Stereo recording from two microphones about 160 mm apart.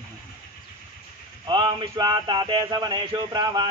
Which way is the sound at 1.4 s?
30° right (ahead or behind).